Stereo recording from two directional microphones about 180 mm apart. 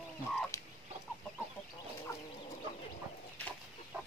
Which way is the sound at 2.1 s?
15° left (ahead or behind).